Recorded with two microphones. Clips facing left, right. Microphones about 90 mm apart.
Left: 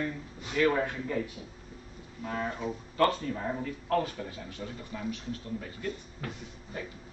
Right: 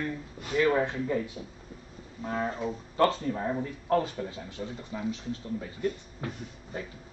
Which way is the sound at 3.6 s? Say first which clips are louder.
Right 1 dB; 25° right (ahead or behind).